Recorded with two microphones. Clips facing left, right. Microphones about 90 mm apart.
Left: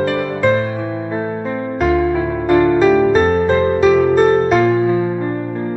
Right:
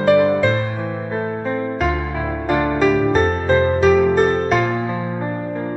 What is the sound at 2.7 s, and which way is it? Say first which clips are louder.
Music: left 4 dB; centre (ahead or behind).